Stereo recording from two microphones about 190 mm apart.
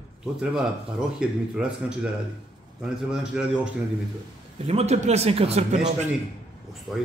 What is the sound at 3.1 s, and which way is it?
Speech, 5° right (ahead or behind).